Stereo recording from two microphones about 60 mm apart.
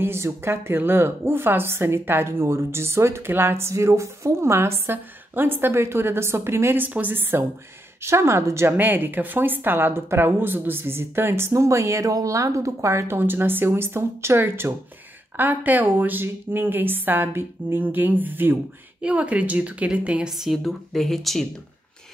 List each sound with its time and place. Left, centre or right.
0.0 s a woman's voice: right
6.8 s speech: right
8.0 s a woman's voice: right
8.7 s speech: right
13.2 s speech: right
15.3 s speech: right
18.9 s a woman's voice: right
20.2 s a woman's voice: centre